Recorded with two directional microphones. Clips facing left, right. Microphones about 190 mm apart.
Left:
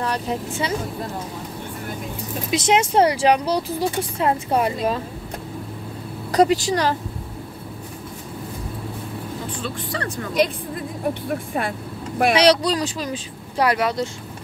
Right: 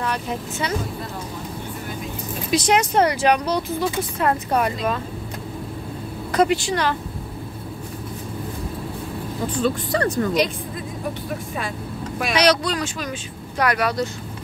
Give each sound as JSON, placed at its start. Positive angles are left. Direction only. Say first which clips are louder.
{"t": 0.0, "sound": "speech", "louder": "left 2 dB", "side_deg": 30}
{"t": 2.5, "sound": "speech", "louder": "even", "side_deg": 25}
{"t": 6.3, "sound": "speech", "louder": "left 2 dB", "side_deg": 40}
{"t": 9.6, "sound": "speech", "louder": "right 10 dB", "side_deg": -40}
{"t": 10.4, "sound": "a woman's voice", "louder": "left 6 dB", "side_deg": 55}
{"t": 12.4, "sound": "speech", "louder": "even", "side_deg": 30}